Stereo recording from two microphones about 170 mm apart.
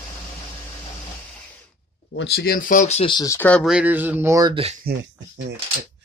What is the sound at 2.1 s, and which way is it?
Speech, 75° left (ahead or behind).